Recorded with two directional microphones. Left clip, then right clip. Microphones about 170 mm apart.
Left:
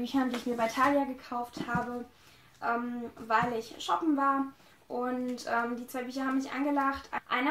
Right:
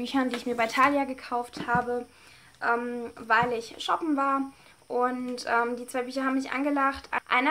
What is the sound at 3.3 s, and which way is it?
Speech, 5° right (ahead or behind).